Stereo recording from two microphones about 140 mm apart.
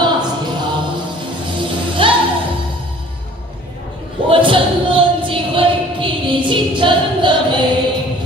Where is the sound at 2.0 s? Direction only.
35° right (ahead or behind).